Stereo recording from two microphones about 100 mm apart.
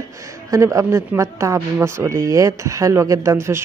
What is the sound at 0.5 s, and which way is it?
A man's voice, 30° right (ahead or behind).